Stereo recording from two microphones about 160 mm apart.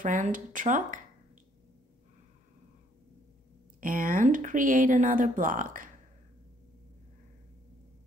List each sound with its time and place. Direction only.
0.0 s speech: 55° right (ahead or behind)
3.8 s speech: 60° right (ahead or behind)